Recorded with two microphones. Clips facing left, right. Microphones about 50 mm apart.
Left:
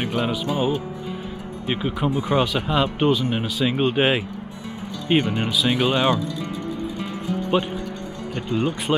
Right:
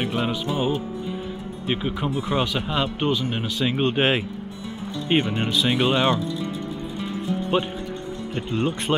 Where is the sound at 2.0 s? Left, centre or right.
Centre.